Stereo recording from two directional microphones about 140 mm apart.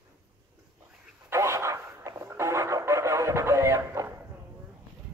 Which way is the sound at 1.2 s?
20° right (ahead or behind).